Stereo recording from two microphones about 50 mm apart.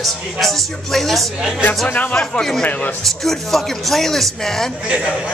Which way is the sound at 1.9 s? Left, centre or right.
Left.